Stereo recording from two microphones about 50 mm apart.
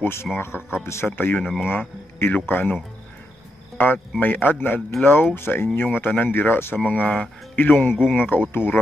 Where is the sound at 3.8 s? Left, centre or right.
Left.